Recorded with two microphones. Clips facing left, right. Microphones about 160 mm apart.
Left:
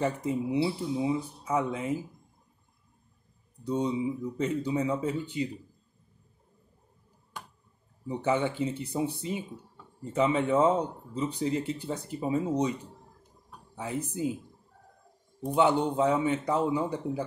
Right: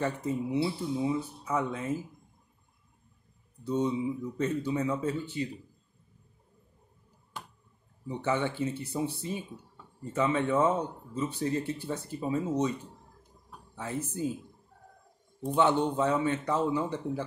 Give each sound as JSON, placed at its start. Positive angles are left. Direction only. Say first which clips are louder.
{"t": 0.0, "sound": "speech", "louder": "left 2 dB", "side_deg": 15}
{"t": 3.6, "sound": "speech", "louder": "even", "side_deg": 15}
{"t": 8.1, "sound": "speech", "louder": "left 2 dB", "side_deg": 15}
{"t": 13.7, "sound": "speech", "louder": "left 1 dB", "side_deg": 15}
{"t": 15.4, "sound": "speech", "louder": "left 1 dB", "side_deg": 10}